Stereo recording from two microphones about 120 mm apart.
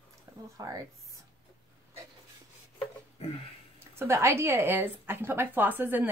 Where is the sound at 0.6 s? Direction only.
30° right (ahead or behind).